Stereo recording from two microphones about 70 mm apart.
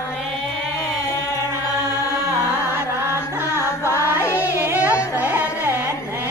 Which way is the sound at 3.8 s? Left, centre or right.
Left.